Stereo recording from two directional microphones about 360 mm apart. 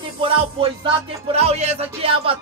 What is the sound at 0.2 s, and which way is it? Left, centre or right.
Music, centre.